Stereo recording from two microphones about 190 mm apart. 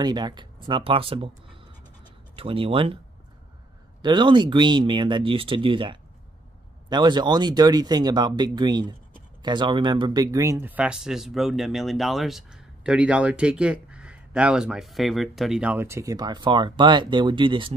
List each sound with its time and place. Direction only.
0.0 s speech: 20° right (ahead or behind)
2.3 s speech: 30° right (ahead or behind)
4.0 s speech: 25° right (ahead or behind)